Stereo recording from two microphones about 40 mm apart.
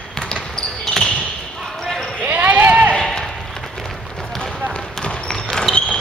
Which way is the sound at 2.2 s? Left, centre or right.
Right.